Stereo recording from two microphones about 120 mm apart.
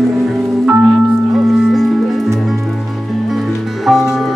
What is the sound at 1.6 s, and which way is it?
Music, centre (ahead or behind).